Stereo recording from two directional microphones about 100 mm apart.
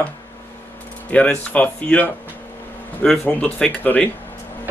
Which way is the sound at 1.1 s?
10° left (ahead or behind).